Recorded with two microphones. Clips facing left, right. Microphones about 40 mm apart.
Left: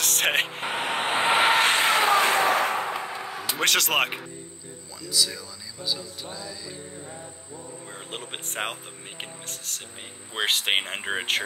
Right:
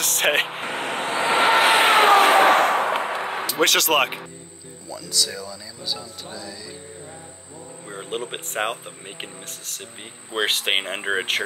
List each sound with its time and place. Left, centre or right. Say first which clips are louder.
0.0 s vehicle: right 3 dB; centre
0.7 s vehicle: right 1 dB; centre
0.9 s vehicle: even; left
1.3 s vehicle: right 4 dB; centre
1.8 s a sound: right 6 dB; right
3.6 s speech: right 4 dB; centre
7.9 s speech: right 9 dB; centre